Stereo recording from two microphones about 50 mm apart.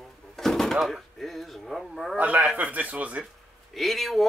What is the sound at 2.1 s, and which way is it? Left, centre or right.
A man's voice, right.